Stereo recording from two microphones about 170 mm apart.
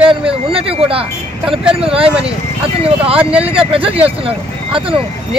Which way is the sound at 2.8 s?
35° right (ahead or behind).